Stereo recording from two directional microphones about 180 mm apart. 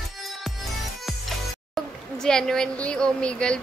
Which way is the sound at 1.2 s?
Centre (ahead or behind).